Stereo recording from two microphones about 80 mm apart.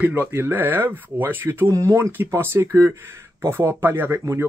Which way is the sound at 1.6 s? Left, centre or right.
Right.